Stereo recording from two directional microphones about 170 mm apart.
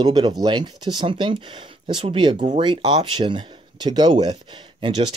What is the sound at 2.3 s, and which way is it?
Speech, 45° right (ahead or behind).